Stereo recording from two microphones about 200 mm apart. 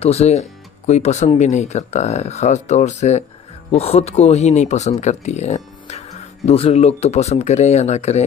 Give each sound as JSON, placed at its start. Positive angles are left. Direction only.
{"t": 0.0, "sound": "speech", "side_deg": 30}